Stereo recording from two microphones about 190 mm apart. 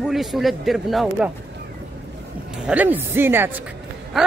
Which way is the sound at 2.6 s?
10° right (ahead or behind).